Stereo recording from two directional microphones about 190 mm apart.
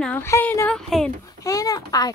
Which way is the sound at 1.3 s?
20° left (ahead or behind).